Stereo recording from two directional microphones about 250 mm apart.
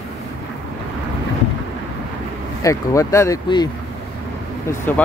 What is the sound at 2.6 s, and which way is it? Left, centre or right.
Speech, centre.